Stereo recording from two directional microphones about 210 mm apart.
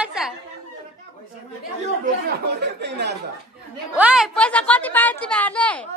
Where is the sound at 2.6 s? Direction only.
55° right (ahead or behind).